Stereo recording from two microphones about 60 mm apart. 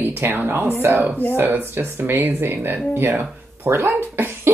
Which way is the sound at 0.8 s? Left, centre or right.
Right.